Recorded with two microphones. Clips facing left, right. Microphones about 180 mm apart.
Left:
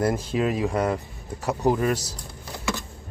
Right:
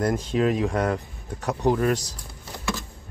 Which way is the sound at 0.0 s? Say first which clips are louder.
Right 1 dB; 5° left (ahead or behind).